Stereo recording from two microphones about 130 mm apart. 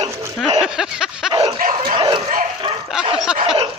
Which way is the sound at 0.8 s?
5° right (ahead or behind).